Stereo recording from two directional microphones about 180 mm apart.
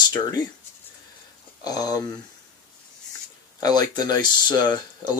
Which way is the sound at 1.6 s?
20° left (ahead or behind).